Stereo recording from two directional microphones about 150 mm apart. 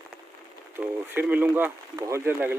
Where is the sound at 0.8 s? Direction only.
10° right (ahead or behind).